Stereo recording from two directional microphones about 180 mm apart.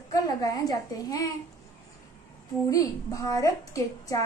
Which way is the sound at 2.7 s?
20° left (ahead or behind).